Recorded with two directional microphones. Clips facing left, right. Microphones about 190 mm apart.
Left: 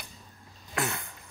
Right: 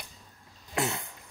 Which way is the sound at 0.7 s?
25° right (ahead or behind).